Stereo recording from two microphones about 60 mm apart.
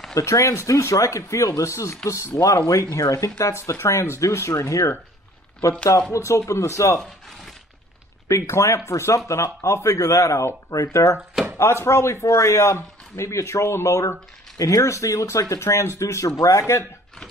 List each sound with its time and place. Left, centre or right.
0.1 s speech: left
3.5 s speech: left
6.1 s speech: left
8.3 s speech: left
11.5 s speech: left